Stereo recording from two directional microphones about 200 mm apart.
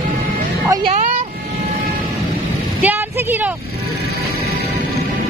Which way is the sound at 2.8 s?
10° right (ahead or behind).